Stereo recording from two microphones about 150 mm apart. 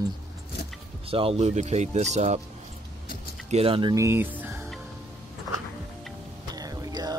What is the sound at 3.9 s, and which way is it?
Speech, 20° right (ahead or behind).